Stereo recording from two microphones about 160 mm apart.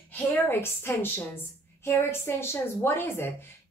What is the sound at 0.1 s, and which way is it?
A woman's voice, 15° left (ahead or behind).